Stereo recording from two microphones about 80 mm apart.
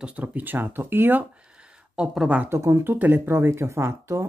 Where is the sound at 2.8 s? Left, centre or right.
Right.